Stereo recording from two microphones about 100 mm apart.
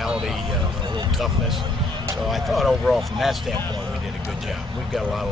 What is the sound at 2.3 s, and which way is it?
Speech, centre (ahead or behind).